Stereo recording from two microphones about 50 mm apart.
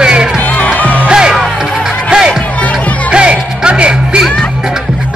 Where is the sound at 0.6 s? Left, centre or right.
Left.